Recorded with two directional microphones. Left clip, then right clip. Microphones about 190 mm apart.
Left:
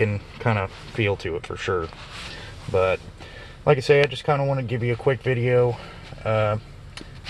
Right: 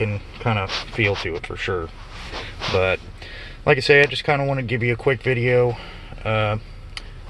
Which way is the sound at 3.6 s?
10° right (ahead or behind).